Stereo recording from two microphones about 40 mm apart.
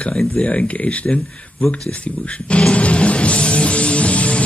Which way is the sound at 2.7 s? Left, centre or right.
Left.